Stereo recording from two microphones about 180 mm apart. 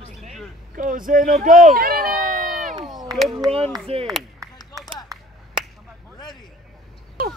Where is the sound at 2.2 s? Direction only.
50° right (ahead or behind).